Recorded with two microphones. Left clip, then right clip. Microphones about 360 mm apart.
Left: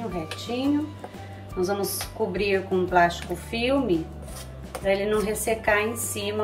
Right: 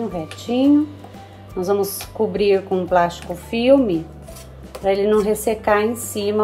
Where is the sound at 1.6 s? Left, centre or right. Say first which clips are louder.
Right 7 dB; centre.